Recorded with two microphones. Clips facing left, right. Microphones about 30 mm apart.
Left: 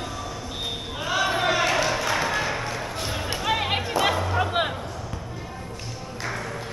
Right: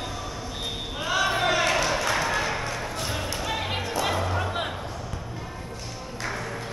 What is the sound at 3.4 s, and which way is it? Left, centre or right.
Music, left.